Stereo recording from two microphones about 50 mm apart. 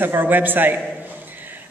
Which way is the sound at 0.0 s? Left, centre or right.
Right.